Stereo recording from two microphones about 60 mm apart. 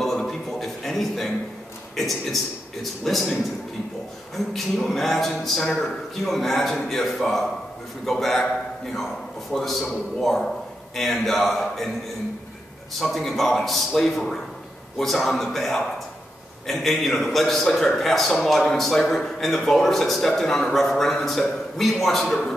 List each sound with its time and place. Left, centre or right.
0.0 s a sound: centre
2.0 s a man's voice: centre
4.6 s a man's voice: centre
9.5 s a man's voice: centre
13.0 s a man's voice: centre